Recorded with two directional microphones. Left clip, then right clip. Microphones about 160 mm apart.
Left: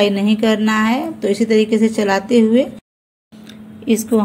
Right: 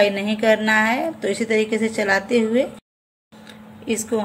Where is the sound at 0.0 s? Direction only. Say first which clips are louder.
Left 2 dB; 20° left (ahead or behind).